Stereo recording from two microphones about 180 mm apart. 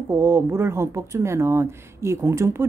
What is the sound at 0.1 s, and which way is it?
Speech, 15° right (ahead or behind).